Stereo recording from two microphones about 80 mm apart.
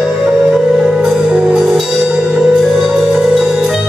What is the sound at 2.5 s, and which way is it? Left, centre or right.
Music, centre.